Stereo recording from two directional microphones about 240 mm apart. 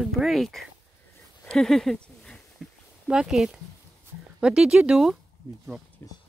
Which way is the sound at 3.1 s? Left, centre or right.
Centre.